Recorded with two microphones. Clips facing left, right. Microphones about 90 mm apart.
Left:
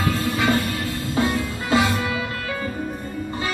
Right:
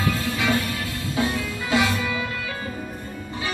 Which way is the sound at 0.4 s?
45° left (ahead or behind).